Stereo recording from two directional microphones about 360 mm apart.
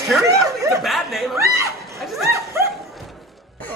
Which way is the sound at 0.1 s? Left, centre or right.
Centre.